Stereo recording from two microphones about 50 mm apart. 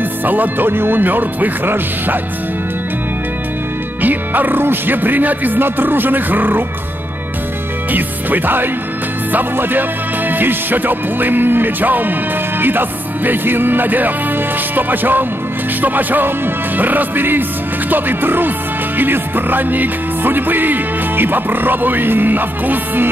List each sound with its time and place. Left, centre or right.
0.2 s music: right
4.0 s music: right
7.9 s music: right
9.3 s speech: right
15.8 s music: right